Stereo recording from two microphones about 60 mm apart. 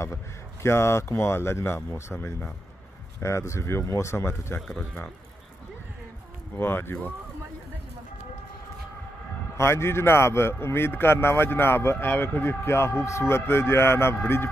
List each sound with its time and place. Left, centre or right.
0.0 s a man's voice: left
3.2 s a man's voice: left
4.6 s speech: centre
6.5 s speech: left
9.6 s a man's voice: left